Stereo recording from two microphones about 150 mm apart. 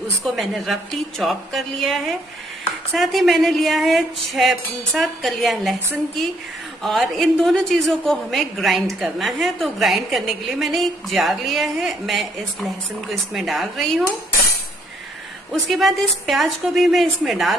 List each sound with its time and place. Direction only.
0.2 s a woman's voice: centre (ahead or behind)
6.8 s a woman's voice: centre (ahead or behind)
15.5 s a woman's voice: centre (ahead or behind)